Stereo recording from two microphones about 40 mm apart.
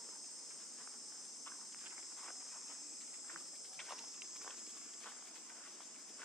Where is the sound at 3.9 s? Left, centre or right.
Centre.